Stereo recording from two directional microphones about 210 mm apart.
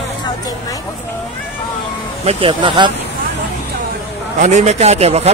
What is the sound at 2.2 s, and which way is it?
Speech, 25° right (ahead or behind).